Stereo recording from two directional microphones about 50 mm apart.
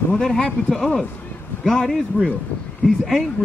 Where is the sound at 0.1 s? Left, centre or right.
Centre.